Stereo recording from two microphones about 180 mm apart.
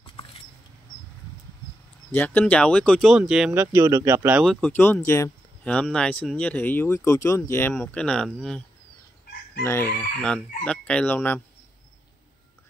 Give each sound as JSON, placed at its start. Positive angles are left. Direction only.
{"t": 0.0, "sound": "bird flight", "side_deg": 30}
{"t": 2.1, "sound": "speech", "side_deg": 10}
{"t": 3.6, "sound": "speech", "side_deg": -15}
{"t": 4.5, "sound": "speech", "side_deg": 5}
{"t": 9.6, "sound": "speech", "side_deg": 15}